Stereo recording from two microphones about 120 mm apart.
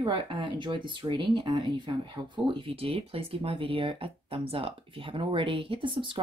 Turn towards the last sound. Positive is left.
turn(degrees=-45)  # may be behind; listen again after turning